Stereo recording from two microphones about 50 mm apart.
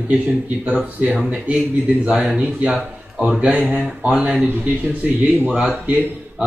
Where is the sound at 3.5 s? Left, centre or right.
Right.